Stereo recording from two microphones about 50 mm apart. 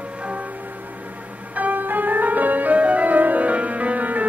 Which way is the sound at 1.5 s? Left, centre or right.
Right.